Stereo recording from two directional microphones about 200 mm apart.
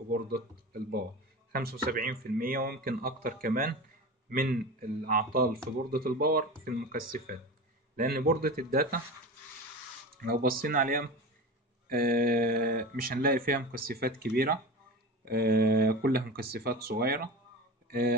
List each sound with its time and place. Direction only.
0.1 s speech: 50° right (ahead or behind)
10.1 s speech: 50° right (ahead or behind)